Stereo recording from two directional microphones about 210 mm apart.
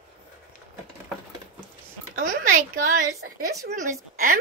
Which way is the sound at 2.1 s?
40° right (ahead or behind).